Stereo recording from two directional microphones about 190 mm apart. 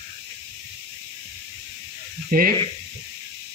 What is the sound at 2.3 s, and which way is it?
Snake, 50° right (ahead or behind).